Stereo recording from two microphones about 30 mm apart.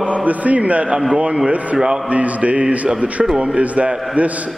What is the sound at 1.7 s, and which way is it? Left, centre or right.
Speech, right.